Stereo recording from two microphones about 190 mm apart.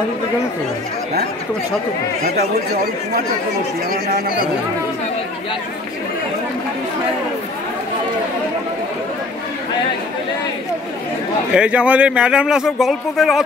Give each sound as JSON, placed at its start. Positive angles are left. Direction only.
{"t": 11.5, "sound": "speech", "side_deg": -5}